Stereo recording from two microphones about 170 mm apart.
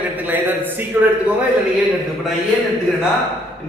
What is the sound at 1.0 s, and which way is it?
Speech, 10° right (ahead or behind).